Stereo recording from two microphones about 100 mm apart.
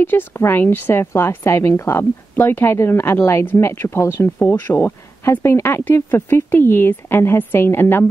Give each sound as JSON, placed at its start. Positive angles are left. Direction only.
{"t": 0.0, "sound": "speech", "side_deg": 20}